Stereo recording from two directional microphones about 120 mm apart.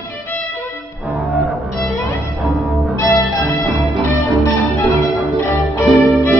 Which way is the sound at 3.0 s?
25° left (ahead or behind).